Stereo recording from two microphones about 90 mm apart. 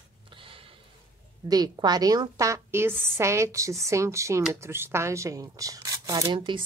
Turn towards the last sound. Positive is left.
turn(degrees=-45)  # may be behind; listen again after turning